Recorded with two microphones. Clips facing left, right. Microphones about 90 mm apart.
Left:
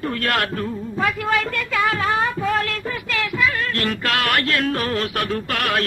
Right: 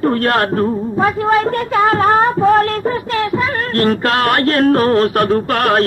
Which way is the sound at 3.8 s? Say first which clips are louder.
Right 10 dB; 35° right (ahead or behind).